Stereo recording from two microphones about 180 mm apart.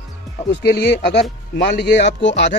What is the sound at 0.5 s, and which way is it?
Speech, 70° left (ahead or behind).